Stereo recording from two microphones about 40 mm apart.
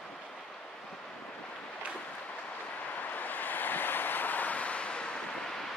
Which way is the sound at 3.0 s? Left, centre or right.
Left.